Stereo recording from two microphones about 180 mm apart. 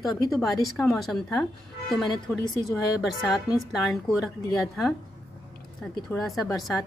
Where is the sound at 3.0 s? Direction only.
Centre (ahead or behind).